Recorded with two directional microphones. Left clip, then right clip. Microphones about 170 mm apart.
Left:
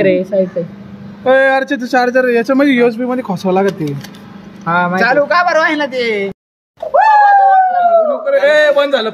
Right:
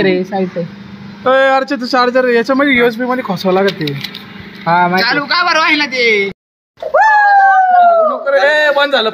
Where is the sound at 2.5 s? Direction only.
25° left (ahead or behind).